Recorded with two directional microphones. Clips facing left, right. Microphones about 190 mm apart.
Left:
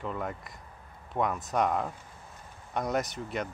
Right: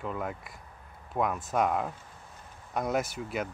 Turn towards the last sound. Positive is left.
turn(degrees=-5)  # may be behind; listen again after turning